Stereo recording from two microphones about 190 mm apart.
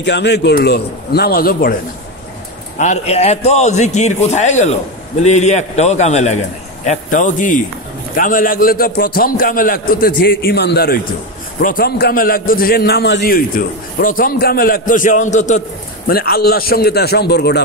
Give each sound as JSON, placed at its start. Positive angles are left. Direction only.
{"t": 0.0, "sound": "a man's voice", "side_deg": 65}
{"t": 2.8, "sound": "a man's voice", "side_deg": 35}
{"t": 16.1, "sound": "a man's voice", "side_deg": 55}